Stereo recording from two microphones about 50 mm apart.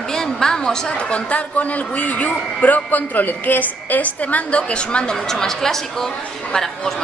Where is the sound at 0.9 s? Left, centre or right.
Left.